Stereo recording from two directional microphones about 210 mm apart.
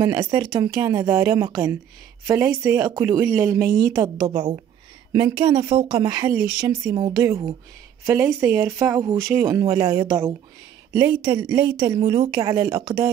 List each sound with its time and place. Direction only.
0.0 s speech: 15° right (ahead or behind)